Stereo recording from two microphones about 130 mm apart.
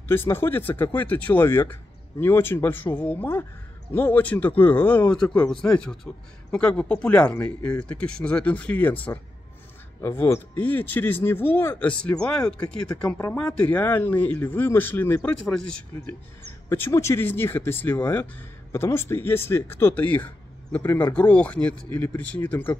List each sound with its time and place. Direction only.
0.1 s speech: 15° left (ahead or behind)
16.6 s speech: 20° left (ahead or behind)